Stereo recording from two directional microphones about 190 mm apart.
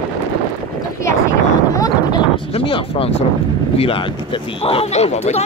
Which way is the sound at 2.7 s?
30° left (ahead or behind).